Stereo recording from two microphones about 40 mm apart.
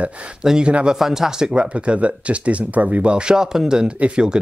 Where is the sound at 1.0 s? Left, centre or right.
Centre.